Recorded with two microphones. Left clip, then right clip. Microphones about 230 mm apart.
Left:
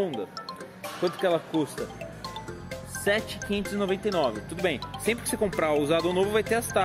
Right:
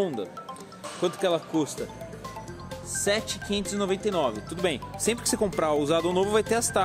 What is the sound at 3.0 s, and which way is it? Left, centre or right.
Speech, centre.